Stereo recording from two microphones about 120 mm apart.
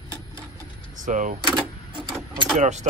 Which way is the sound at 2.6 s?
80° right.